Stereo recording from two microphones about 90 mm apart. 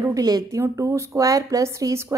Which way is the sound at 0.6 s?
30° right (ahead or behind).